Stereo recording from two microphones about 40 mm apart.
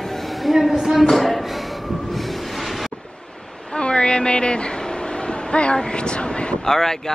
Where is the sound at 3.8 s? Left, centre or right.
Left.